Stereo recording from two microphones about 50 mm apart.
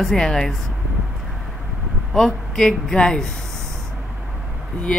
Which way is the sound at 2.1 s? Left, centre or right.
Centre.